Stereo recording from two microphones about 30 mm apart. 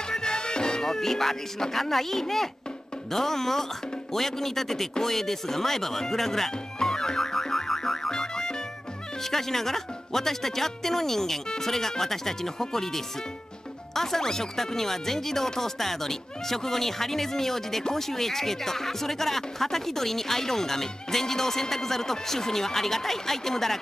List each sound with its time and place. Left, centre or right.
0.1 s music: left
0.8 s speech: centre
6.8 s music: left
7.3 s music: centre
8.1 s music: left
9.2 s speech: centre